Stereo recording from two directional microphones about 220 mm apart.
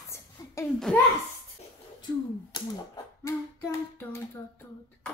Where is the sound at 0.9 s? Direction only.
5° left (ahead or behind).